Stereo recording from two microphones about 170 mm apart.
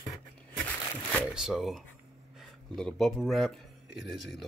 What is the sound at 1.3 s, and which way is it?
Speech, centre (ahead or behind).